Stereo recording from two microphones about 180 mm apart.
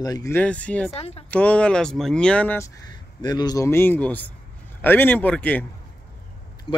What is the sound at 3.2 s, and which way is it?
Speech, 25° left (ahead or behind).